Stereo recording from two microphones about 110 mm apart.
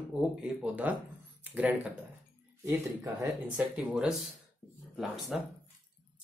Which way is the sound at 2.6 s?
25° right (ahead or behind).